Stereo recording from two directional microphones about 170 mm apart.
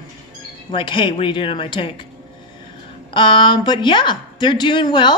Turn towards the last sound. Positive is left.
turn(degrees=30)  # may be behind; listen again after turning